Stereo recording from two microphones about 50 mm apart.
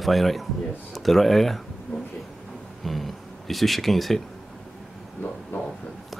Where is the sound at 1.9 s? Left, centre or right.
Left.